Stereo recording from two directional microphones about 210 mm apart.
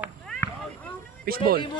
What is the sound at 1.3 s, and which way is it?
Speech, 45° right (ahead or behind).